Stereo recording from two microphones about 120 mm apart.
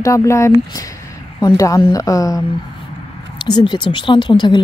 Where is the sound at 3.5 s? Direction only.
40° left (ahead or behind).